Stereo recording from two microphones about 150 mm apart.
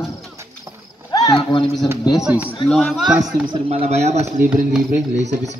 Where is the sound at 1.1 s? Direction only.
25° left (ahead or behind).